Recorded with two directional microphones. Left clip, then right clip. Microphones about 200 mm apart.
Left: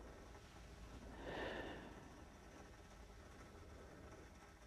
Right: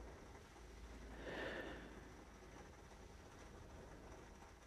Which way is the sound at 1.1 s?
Centre (ahead or behind).